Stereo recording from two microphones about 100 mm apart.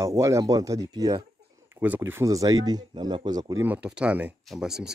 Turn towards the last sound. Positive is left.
turn(degrees=-5)  # may be behind; listen again after turning